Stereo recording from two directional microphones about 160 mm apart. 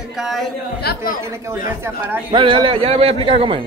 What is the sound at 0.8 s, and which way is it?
Speech, 70° left (ahead or behind).